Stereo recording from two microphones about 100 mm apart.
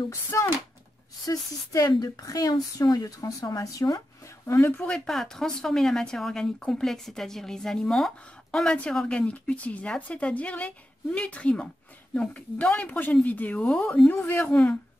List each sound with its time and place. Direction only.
0.1 s a woman's voice: 30° left (ahead or behind)
4.5 s speech: 20° left (ahead or behind)
4.9 s speech: 5° left (ahead or behind)